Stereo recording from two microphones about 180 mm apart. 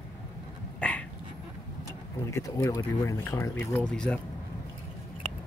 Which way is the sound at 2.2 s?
15° left (ahead or behind).